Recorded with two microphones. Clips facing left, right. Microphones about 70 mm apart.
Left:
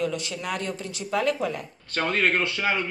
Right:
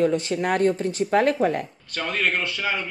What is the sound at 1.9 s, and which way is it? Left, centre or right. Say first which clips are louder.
Speech: left 2 dB; left.